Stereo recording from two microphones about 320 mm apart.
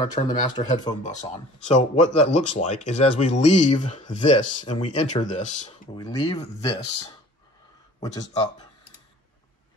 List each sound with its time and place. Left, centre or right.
0.1 s speech: centre